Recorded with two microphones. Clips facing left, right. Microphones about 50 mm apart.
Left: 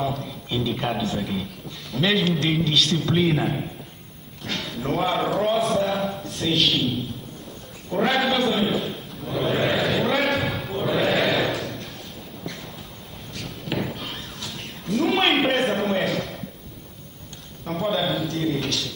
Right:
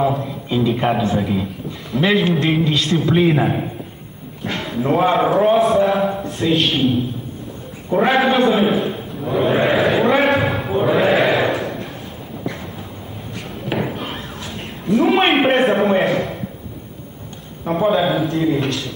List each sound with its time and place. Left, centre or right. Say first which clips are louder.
0.0 s a man's voice: right 8 dB; right
1.0 s a man's voice: right 7 dB; centre
4.4 s a sound: right 7 dB; centre
4.9 s a man's voice: right 8 dB; right
5.6 s a man's voice: right 7 dB; centre
7.9 s a man's voice: right 6 dB; right
10.6 s a sound: right 7 dB; right
13.3 s a sound: right 5 dB; centre
17.6 s a man's voice: right 8 dB; right